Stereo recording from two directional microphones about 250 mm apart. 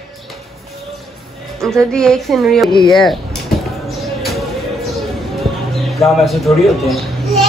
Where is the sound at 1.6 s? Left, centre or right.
Centre.